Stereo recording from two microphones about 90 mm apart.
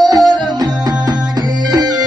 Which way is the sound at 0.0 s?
55° right (ahead or behind).